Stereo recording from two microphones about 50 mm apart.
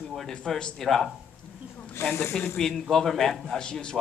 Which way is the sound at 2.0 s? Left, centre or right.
Left.